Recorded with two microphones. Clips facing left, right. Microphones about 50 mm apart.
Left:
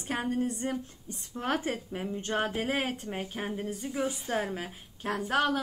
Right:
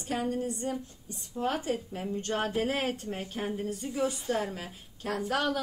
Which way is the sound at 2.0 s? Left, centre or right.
Centre.